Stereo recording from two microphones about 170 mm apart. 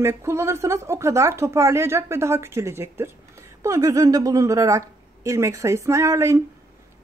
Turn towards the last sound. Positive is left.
turn(degrees=-15)  # may be behind; listen again after turning